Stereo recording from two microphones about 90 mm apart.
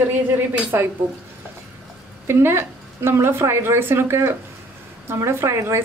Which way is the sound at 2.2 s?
25° right (ahead or behind).